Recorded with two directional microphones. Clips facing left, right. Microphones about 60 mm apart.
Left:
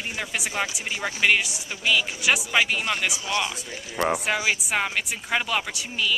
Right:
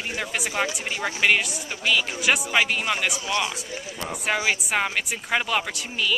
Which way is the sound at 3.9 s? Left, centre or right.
Left.